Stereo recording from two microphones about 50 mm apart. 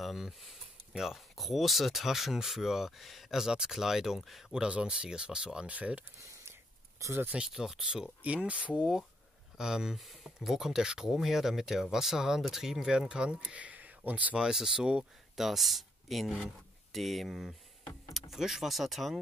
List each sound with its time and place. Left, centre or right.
0.0 s speech: centre
4.6 s speech: centre
5.7 s speech: right
6.2 s a sound: right
7.0 s speech: right
7.5 s speech: centre
8.2 s speech: right
9.6 s speech: centre
13.5 s a sound: right
14.3 s speech: centre